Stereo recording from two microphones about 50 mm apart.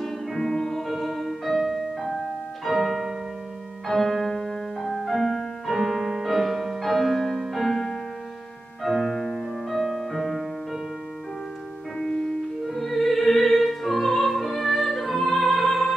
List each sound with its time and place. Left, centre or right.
0.0 s music: centre
12.6 s opera: centre